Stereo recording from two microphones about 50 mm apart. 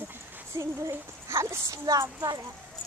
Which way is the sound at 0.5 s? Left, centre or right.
Right.